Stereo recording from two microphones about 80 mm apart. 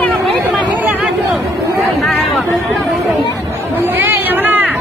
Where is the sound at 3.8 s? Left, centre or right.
Right.